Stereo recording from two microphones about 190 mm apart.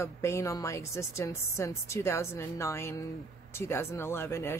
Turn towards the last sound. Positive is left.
turn(degrees=15)  # may be behind; listen again after turning